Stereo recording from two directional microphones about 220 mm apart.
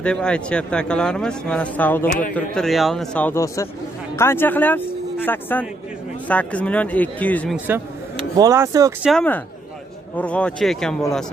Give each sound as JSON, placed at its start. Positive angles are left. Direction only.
{"t": 0.0, "sound": "a man's voice", "side_deg": 5}
{"t": 7.5, "sound": "speech", "side_deg": -10}
{"t": 9.0, "sound": "a man's voice", "side_deg": 5}